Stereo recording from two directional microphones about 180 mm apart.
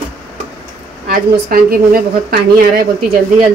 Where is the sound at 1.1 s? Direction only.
55° right (ahead or behind).